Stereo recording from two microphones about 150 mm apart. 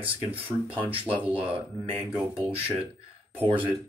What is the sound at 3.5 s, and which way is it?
Speech, 35° right (ahead or behind).